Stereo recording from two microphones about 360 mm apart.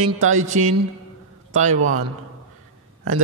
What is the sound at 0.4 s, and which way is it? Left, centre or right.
A man's voice, centre.